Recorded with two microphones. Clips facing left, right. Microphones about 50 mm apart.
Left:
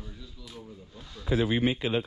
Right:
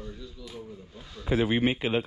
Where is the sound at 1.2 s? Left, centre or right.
Right.